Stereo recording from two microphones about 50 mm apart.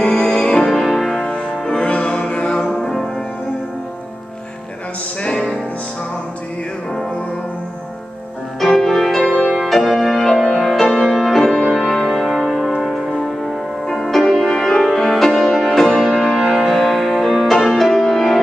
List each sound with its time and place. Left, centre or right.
0.0 s music: centre
0.7 s music: centre
5.2 s music: centre
8.5 s music: centre
12.1 s music: centre
16.4 s music: centre